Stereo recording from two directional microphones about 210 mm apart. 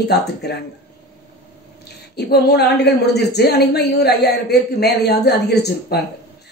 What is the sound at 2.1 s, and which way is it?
A woman's voice, 50° left (ahead or behind).